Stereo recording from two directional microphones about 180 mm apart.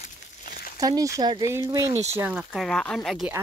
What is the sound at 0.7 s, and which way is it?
Speech, 20° right (ahead or behind).